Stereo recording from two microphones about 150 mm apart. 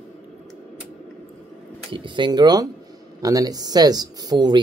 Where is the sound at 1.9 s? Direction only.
30° right (ahead or behind).